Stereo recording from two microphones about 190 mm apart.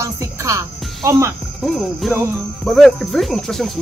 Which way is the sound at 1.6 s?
Centre (ahead or behind).